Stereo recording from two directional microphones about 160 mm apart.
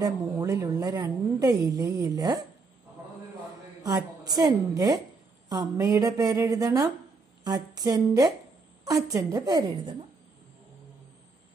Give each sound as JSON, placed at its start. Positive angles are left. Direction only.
{"t": 0.0, "sound": "a woman's voice", "side_deg": -20}
{"t": 3.8, "sound": "a woman's voice", "side_deg": -25}